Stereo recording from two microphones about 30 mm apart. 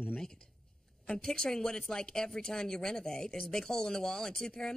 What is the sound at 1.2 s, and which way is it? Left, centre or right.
Speech, left.